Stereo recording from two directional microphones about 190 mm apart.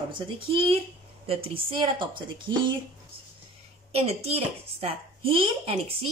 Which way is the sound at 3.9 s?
30° right (ahead or behind).